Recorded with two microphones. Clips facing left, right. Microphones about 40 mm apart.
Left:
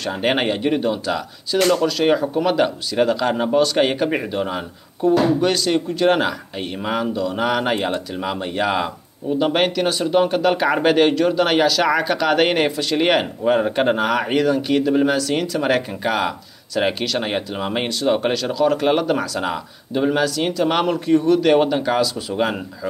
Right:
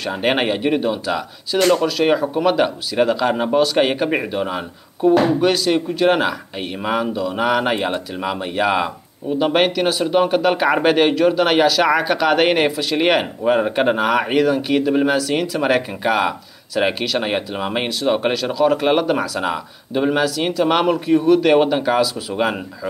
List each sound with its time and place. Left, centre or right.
0.0 s speech: centre
1.6 s speech: right
1.9 s speech: centre